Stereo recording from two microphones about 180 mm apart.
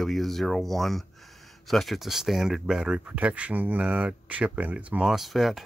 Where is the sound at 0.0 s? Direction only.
Centre (ahead or behind).